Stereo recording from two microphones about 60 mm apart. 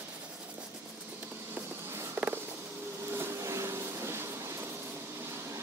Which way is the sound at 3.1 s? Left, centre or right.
Right.